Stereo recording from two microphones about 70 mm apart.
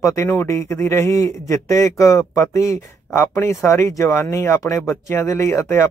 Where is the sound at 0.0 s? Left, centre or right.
Left.